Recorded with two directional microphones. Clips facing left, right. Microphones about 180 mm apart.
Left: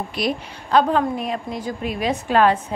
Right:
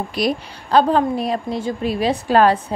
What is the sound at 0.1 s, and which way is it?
A woman's voice, 35° right (ahead or behind).